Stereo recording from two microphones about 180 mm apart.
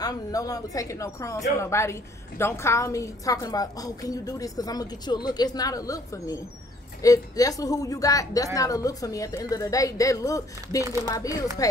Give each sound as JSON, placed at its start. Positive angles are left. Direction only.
{"t": 0.0, "sound": "a woman's voice", "side_deg": 20}